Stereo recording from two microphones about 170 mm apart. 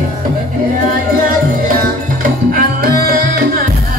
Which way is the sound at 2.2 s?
60° right (ahead or behind).